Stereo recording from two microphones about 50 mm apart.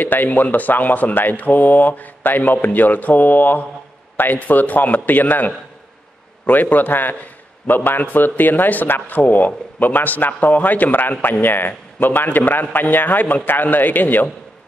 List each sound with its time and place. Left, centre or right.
0.0 s a man's voice: left